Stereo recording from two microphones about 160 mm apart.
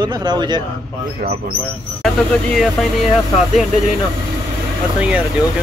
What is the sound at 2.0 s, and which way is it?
Speech, centre (ahead or behind).